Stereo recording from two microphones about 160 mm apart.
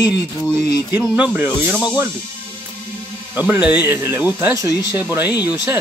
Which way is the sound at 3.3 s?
10° right (ahead or behind).